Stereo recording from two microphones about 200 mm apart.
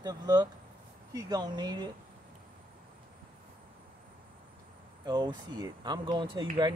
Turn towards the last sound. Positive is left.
turn(degrees=-25)  # may be behind; listen again after turning